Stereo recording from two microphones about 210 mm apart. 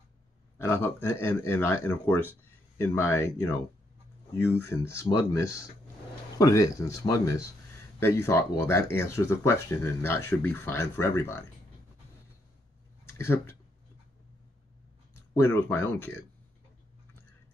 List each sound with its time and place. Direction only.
0.6 s speech: 10° left (ahead or behind)
8.0 s speech: 15° left (ahead or behind)
13.0 s speech: 10° left (ahead or behind)
15.3 s speech: 10° left (ahead or behind)